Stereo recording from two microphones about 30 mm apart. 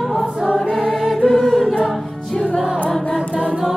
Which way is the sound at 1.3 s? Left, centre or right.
Centre.